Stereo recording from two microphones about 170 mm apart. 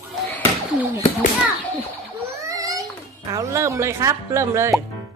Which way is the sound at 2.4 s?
20° right (ahead or behind).